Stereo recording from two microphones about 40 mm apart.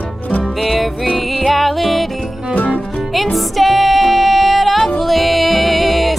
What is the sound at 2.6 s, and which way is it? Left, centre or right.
Music, left.